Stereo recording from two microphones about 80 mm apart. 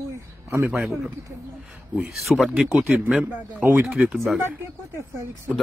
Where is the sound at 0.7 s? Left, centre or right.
Centre.